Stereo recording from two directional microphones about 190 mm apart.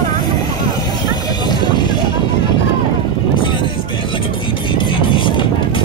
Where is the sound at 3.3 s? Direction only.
25° left (ahead or behind).